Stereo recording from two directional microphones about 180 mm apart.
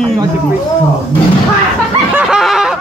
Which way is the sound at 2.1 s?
Centre (ahead or behind).